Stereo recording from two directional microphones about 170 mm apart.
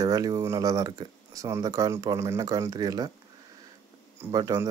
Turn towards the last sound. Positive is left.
turn(degrees=-20)  # may be behind; listen again after turning